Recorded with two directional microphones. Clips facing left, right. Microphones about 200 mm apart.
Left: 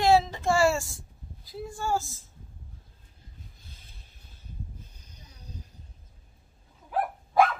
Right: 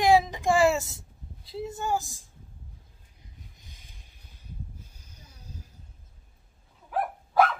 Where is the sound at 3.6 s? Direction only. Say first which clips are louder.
Even; 15° right (ahead or behind).